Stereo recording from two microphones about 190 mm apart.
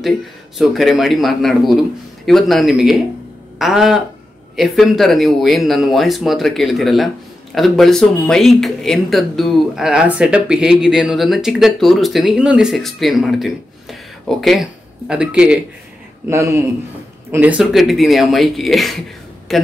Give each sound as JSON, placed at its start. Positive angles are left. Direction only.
{"t": 0.6, "sound": "speech", "side_deg": 0}
{"t": 16.3, "sound": "speech", "side_deg": -15}